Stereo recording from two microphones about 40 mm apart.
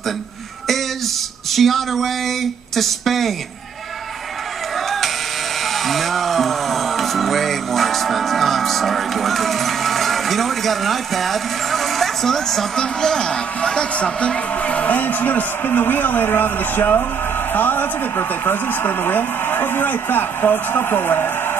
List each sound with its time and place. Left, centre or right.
1.5 s speech: centre
4.8 s music: centre
5.7 s a sound: centre; by 14.4 s left
14.5 s music: left
15.0 s speech: left